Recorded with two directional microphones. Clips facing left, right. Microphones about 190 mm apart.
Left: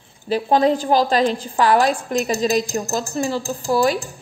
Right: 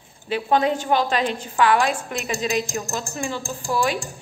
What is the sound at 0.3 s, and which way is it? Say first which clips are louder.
A woman's voice: left 4 dB; 35° left (ahead or behind).